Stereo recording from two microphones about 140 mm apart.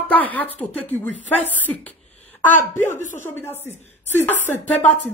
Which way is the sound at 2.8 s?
60° left (ahead or behind).